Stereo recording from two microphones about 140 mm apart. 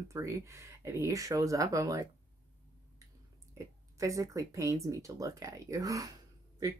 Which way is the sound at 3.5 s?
25° right (ahead or behind).